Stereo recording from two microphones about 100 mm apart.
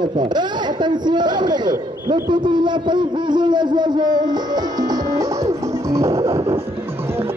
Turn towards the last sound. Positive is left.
turn(degrees=-30)  # may be behind; listen again after turning